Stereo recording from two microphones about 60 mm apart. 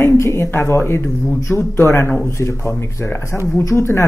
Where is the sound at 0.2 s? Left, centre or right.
Left.